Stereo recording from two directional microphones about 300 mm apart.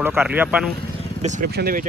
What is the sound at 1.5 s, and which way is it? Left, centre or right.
Speech, right.